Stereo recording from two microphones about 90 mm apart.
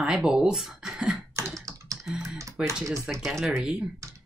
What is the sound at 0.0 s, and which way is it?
Speech, 10° right (ahead or behind).